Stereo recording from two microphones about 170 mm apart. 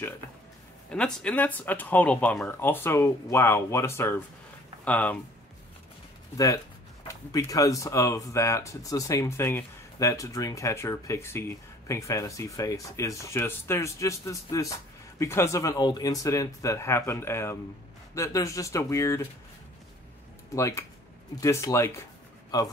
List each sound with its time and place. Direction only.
0.8 s speech: 5° left (ahead or behind)
6.3 s speech: 20° left (ahead or behind)
20.5 s speech: 20° left (ahead or behind)